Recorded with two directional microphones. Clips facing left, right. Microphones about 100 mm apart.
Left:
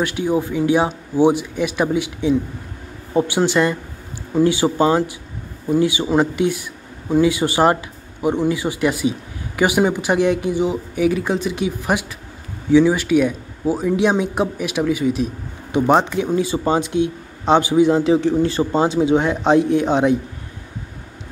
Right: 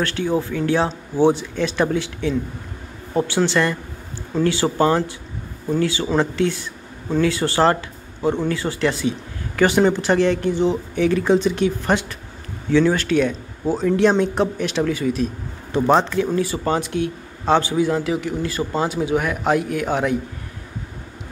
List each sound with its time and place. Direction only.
0.0 s speech: 10° left (ahead or behind)